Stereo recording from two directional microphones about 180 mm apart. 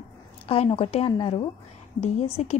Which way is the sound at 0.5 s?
30° left (ahead or behind).